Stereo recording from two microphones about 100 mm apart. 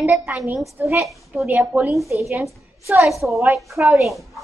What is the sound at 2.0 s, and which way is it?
Speech, 30° right (ahead or behind).